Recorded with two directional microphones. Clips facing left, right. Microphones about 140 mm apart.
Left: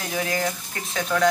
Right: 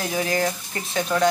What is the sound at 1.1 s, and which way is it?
Speech, 25° right (ahead or behind).